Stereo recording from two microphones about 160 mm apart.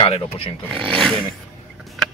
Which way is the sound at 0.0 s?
35° left (ahead or behind).